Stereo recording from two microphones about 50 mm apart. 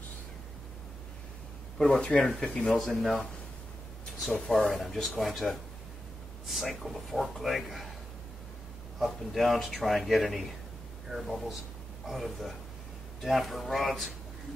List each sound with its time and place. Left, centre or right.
1.8 s speech: centre
2.8 s a man's voice: centre
4.5 s a man's voice: centre
9.0 s a man's voice: centre